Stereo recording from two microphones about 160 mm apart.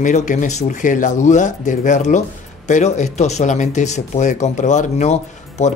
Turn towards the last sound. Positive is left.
turn(degrees=45)  # may be behind; listen again after turning